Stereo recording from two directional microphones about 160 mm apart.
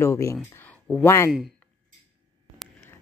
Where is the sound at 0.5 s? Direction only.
10° left (ahead or behind).